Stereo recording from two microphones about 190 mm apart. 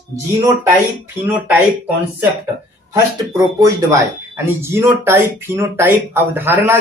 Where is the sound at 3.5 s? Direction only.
15° right (ahead or behind).